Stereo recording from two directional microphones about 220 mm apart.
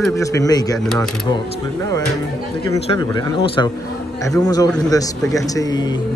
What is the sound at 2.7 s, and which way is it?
Speech, 15° left (ahead or behind).